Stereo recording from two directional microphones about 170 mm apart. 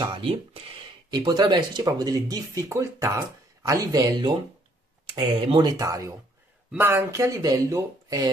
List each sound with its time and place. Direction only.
0.0 s speech: 30° right (ahead or behind)